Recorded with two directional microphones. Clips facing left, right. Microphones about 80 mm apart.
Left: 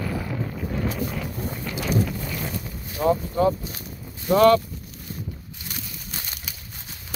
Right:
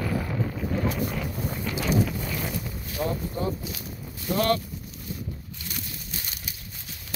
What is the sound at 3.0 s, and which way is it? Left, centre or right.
Speech, centre.